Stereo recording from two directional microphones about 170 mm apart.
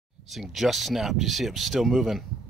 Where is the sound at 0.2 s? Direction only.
Centre (ahead or behind).